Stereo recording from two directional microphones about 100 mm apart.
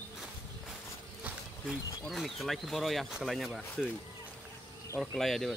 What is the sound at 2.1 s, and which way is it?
Speech, centre (ahead or behind).